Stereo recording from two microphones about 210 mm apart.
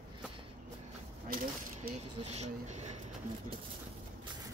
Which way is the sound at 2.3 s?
30° right (ahead or behind).